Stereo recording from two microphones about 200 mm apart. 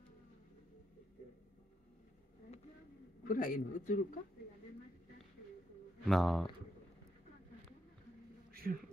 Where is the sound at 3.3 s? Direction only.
45° left (ahead or behind).